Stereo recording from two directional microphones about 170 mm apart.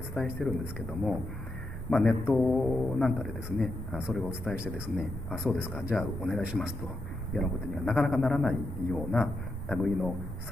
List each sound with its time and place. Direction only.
0.1 s a man's voice: centre (ahead or behind)
4.0 s speech: 15° left (ahead or behind)
5.9 s a man's voice: centre (ahead or behind)
7.7 s a man's voice: centre (ahead or behind)